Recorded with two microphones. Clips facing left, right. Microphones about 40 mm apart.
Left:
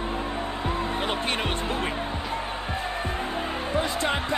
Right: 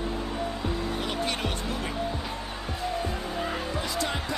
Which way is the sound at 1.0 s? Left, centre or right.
Left.